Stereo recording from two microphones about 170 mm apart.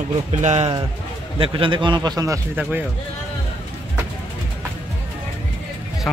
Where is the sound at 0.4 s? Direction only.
40° right (ahead or behind).